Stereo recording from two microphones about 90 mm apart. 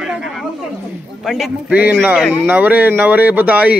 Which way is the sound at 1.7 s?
20° right (ahead or behind).